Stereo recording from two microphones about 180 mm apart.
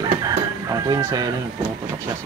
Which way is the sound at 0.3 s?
20° right (ahead or behind).